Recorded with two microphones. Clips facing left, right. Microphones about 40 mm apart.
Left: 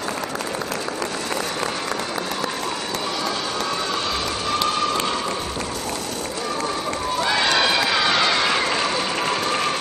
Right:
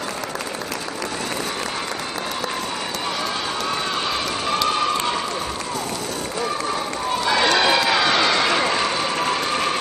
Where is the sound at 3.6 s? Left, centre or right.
Centre.